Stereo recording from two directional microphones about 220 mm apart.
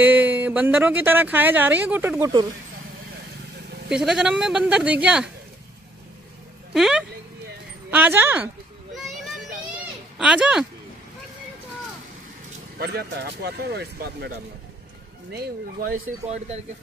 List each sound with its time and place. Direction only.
0.0 s speech: 10° right (ahead or behind)
3.9 s speech: centre (ahead or behind)
6.7 s speech: 5° right (ahead or behind)
8.9 s children playing: centre (ahead or behind)
10.1 s speech: 5° right (ahead or behind)
12.7 s speech: 45° right (ahead or behind)